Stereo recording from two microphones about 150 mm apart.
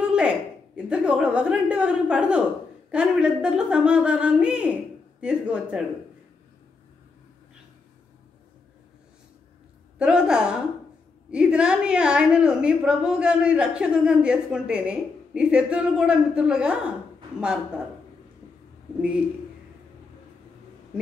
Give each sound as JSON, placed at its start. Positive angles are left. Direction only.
{"t": 0.0, "sound": "a sound", "side_deg": -5}
{"t": 0.7, "sound": "a woman's voice", "side_deg": -5}
{"t": 9.9, "sound": "a woman's voice", "side_deg": -5}